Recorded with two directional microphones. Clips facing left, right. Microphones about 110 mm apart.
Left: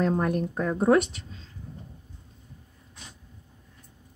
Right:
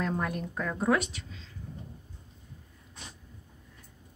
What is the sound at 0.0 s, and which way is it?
Speech, 35° left (ahead or behind).